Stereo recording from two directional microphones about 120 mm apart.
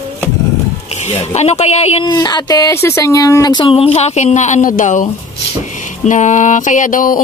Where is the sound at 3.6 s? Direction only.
50° left (ahead or behind).